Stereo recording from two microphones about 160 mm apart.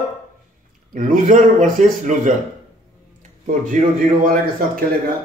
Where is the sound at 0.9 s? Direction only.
55° right (ahead or behind).